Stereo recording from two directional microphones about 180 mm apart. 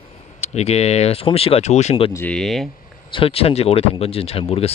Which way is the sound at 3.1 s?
30° left (ahead or behind).